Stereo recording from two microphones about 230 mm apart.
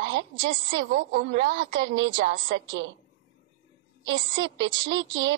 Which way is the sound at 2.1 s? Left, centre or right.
Right.